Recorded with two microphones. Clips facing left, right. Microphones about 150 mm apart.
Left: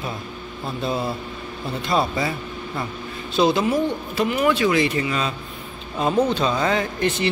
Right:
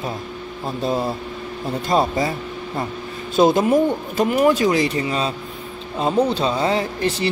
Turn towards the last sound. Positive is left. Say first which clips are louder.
# right 1 dB
turn(degrees=-35)  # may be behind; listen again after turning